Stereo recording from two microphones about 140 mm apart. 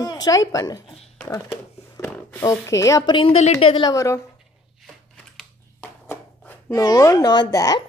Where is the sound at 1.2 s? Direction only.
20° left (ahead or behind).